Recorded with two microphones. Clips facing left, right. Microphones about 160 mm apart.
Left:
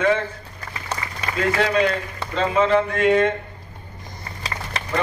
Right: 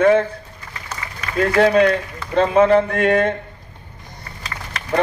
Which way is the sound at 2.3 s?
55° right (ahead or behind).